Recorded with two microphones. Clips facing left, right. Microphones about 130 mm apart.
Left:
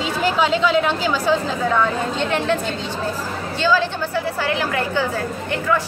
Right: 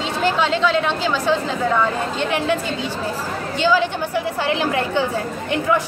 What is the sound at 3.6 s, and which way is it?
A woman's voice, 15° right (ahead or behind).